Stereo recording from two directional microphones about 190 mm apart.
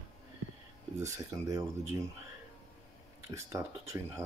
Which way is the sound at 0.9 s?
15° right (ahead or behind).